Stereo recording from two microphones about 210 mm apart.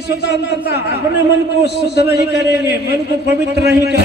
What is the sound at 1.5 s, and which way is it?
Speech, 55° right (ahead or behind).